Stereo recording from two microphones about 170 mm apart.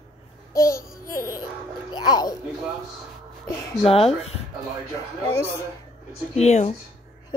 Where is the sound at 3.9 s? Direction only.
35° left (ahead or behind).